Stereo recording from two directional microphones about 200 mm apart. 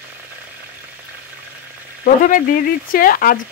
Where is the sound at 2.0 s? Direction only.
45° left (ahead or behind).